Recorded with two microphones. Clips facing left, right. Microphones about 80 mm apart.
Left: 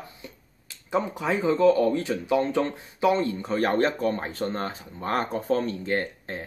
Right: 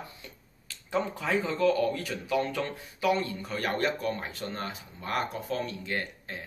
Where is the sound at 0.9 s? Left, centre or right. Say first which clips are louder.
Left 3 dB; left.